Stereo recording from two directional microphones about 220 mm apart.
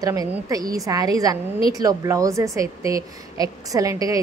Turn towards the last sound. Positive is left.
turn(degrees=-15)  # may be behind; listen again after turning